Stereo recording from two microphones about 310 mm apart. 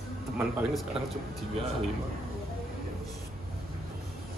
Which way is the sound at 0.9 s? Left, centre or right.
Centre.